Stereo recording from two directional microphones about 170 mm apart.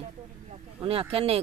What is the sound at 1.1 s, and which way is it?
Speech, 35° right (ahead or behind).